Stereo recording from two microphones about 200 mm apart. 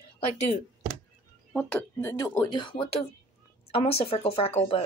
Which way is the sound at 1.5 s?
5° left (ahead or behind).